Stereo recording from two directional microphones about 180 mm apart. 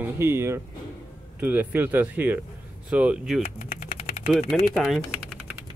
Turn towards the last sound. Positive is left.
turn(degrees=0)  # may be behind; listen again after turning